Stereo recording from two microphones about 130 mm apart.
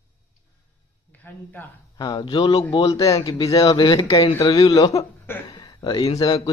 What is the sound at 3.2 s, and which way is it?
Speech, 40° left (ahead or behind).